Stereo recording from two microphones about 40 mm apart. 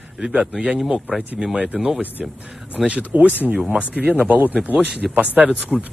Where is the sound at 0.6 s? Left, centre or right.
Centre.